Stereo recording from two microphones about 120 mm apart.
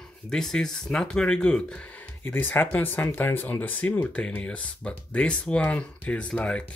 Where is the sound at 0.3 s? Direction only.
5° left (ahead or behind).